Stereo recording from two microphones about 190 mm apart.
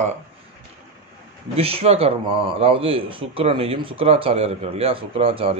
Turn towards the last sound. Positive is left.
turn(degrees=-30)  # may be behind; listen again after turning